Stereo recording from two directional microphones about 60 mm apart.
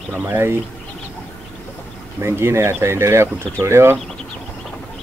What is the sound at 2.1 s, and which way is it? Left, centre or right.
Speech, right.